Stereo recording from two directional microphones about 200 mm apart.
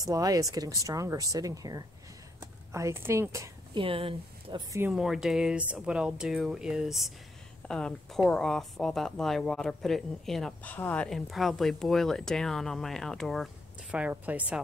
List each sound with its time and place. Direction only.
0.0 s speech: 20° right (ahead or behind)
2.4 s a sound: 15° right (ahead or behind)
3.8 s speech: 30° right (ahead or behind)
4.8 s a woman's voice: centre (ahead or behind)